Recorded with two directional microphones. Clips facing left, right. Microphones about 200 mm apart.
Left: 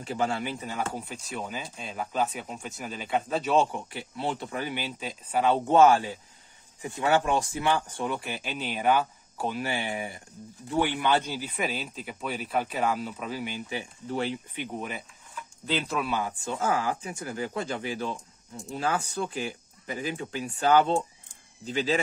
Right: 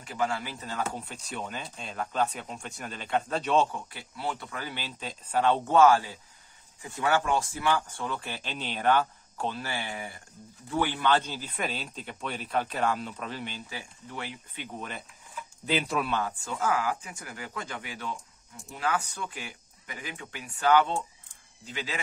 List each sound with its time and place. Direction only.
0.0 s speech: 30° left (ahead or behind); by 3.6 s 5° left (ahead or behind)
3.7 s speech: 25° left (ahead or behind); by 5.6 s 10° left (ahead or behind)
5.7 s speech: 20° left (ahead or behind)
14.0 s speech: 30° left (ahead or behind)
14.5 s speech: 15° left (ahead or behind)
16.4 s speech: 25° left (ahead or behind)